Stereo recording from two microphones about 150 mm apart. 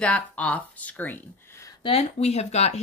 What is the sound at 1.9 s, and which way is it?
Speech, 45° left (ahead or behind).